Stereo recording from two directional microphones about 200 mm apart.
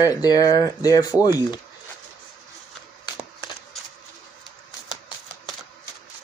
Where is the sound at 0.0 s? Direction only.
20° left (ahead or behind).